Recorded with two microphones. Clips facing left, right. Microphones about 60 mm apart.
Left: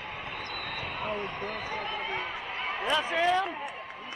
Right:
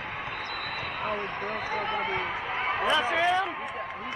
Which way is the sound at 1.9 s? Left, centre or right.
Right.